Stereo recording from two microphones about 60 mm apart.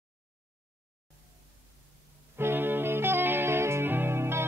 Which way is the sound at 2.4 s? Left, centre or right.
Right.